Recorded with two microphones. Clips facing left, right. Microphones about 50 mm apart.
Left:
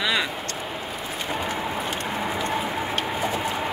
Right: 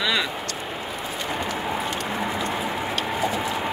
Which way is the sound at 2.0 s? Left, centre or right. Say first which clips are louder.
Even; left.